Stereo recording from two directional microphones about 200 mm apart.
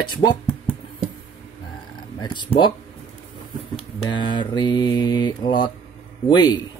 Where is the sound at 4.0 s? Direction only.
25° left (ahead or behind).